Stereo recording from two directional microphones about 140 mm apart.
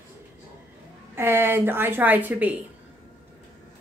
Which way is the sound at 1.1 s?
15° right (ahead or behind).